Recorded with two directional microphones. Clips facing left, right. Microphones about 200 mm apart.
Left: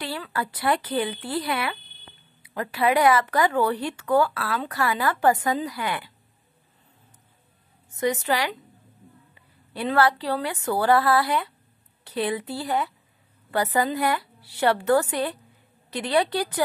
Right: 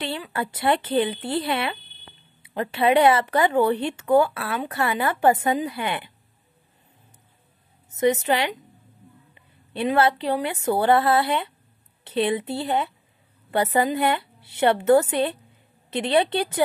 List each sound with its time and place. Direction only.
0.0 s speech: 25° right (ahead or behind)
7.9 s a woman's voice: 20° right (ahead or behind)